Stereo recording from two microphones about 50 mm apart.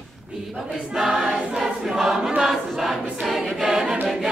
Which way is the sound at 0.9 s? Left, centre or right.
Centre.